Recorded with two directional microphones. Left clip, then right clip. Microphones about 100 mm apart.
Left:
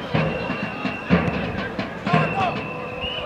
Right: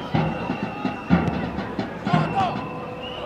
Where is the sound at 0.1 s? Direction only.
25° left (ahead or behind).